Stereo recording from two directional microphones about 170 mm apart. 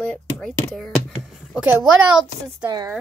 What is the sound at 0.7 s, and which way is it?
Speech, 5° right (ahead or behind).